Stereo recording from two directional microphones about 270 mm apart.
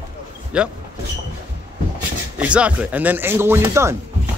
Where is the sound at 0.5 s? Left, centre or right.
Centre.